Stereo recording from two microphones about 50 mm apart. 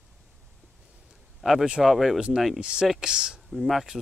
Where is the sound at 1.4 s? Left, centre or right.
Centre.